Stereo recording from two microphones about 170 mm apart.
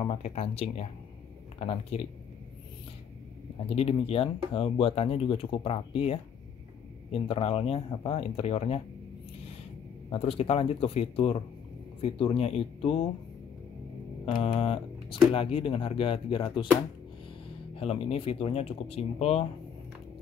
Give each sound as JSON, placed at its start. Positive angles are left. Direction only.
{"t": 0.0, "sound": "speech", "side_deg": 40}
{"t": 3.6, "sound": "speech", "side_deg": 35}
{"t": 10.0, "sound": "speech", "side_deg": 35}
{"t": 14.2, "sound": "speech", "side_deg": 35}
{"t": 17.7, "sound": "speech", "side_deg": 35}